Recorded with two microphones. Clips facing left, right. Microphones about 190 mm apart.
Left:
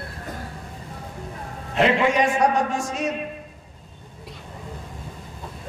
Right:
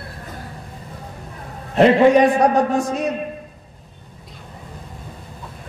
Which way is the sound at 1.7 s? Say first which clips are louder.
Right 7 dB; 40° right (ahead or behind).